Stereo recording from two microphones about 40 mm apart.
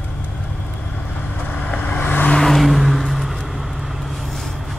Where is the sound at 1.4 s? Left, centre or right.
Left.